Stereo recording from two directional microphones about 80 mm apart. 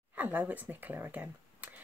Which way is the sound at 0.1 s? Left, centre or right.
Right.